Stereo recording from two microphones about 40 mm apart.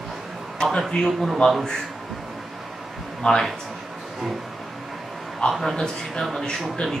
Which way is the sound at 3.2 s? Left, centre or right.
Left.